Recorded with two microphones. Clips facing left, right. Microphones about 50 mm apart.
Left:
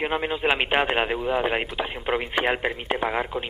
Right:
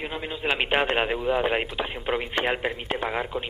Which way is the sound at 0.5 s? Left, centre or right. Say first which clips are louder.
Right 2 dB; centre.